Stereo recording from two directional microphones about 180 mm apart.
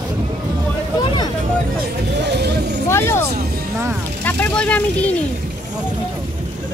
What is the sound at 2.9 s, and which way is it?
Speech, 15° left (ahead or behind).